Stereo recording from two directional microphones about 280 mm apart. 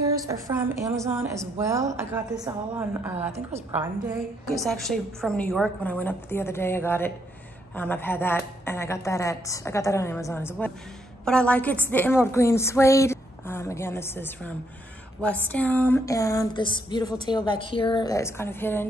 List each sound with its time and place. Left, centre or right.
0.3 s a woman's voice: centre
3.3 s a woman's voice: right
4.0 s a woman's voice: centre